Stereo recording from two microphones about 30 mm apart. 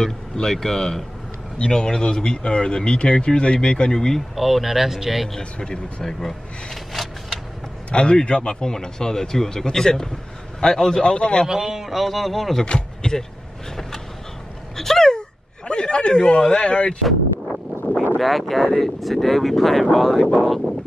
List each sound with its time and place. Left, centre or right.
0.0 s speech: centre
4.4 s speech: centre
5.4 s speech: left
6.0 s speech: centre
7.9 s speech: left
8.6 s speech: left
11.4 s a man's voice: centre
11.8 s speech: centre
12.6 s speech: left
14.8 s speech: centre
15.1 s speech: left
18.2 s speech: centre